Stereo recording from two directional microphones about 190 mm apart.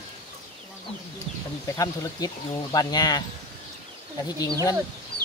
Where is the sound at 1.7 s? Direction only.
15° left (ahead or behind).